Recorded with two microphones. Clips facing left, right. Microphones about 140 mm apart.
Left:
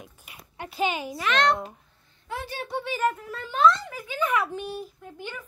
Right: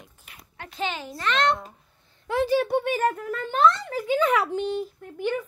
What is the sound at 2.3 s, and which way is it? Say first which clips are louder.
Speech: right 12 dB; 90° right.